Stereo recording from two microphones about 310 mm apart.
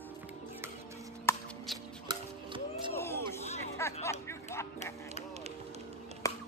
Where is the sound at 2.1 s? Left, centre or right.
Centre.